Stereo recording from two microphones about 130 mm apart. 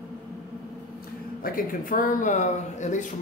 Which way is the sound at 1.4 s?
90° left.